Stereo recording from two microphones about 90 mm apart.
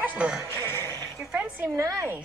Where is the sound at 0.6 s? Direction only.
25° left (ahead or behind).